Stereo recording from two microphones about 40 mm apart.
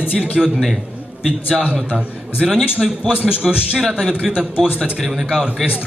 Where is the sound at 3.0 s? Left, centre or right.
Right.